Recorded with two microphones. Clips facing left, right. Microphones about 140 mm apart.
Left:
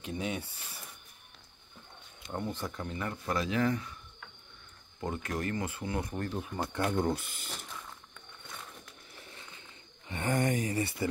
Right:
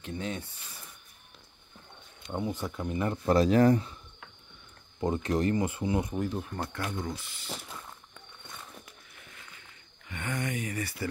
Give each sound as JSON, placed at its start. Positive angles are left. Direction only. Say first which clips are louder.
{"t": 0.0, "sound": "speech", "louder": "even", "side_deg": 15}
{"t": 2.2, "sound": "speech", "louder": "right 3 dB", "side_deg": -10}
{"t": 3.3, "sound": "speech", "louder": "right 9 dB", "side_deg": -35}
{"t": 5.0, "sound": "speech", "louder": "right 7 dB", "side_deg": -25}
{"t": 7.0, "sound": "speech", "louder": "left 6 dB", "side_deg": 55}
{"t": 9.1, "sound": "a sound", "louder": "left 4 dB", "side_deg": 30}
{"t": 10.3, "sound": "speech", "louder": "left 5 dB", "side_deg": 45}
{"t": 10.6, "sound": "speech", "louder": "left 3 dB", "side_deg": 30}